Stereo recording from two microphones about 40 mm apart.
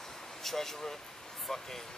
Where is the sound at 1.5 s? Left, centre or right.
Centre.